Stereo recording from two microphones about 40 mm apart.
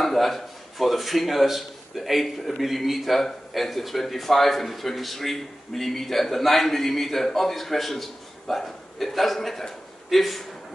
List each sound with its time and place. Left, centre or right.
0.0 s a man's voice: centre